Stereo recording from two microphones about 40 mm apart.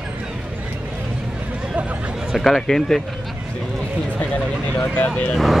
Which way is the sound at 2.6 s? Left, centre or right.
Centre.